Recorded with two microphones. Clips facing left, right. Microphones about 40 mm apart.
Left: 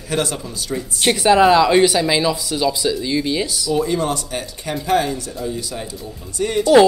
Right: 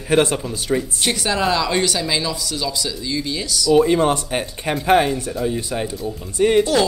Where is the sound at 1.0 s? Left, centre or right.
Centre.